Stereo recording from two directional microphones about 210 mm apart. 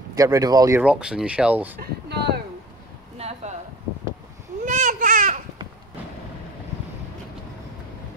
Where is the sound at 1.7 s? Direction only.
50° right (ahead or behind).